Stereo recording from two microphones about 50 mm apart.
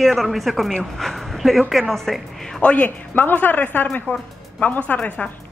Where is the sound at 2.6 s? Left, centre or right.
Left.